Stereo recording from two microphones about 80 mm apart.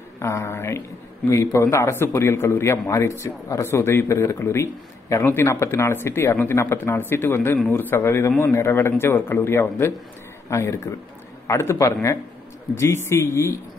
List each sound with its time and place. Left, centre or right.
0.2 s speech: left